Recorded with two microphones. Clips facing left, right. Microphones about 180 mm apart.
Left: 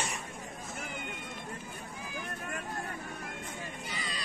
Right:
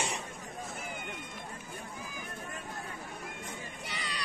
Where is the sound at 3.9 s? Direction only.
75° right (ahead or behind).